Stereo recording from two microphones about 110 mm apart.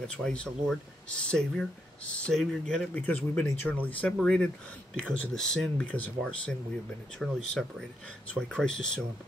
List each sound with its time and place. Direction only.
0.1 s speech: 10° left (ahead or behind)
7.2 s speech: centre (ahead or behind)
8.4 s speech: 5° left (ahead or behind)